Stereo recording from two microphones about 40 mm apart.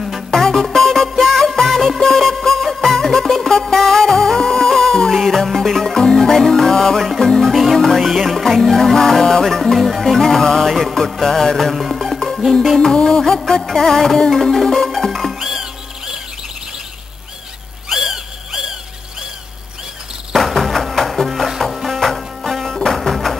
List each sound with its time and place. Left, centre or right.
0.3 s music: centre
8.1 s music: centre
10.7 s music: centre
11.1 s music: centre
13.6 s music: centre
15.4 s music: centre
17.8 s a sound: centre
20.3 s music: centre